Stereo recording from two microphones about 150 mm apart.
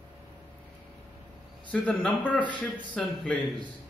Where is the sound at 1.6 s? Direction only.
10° left (ahead or behind).